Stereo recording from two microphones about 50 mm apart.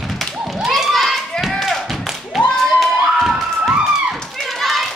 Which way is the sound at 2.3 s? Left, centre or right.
Centre.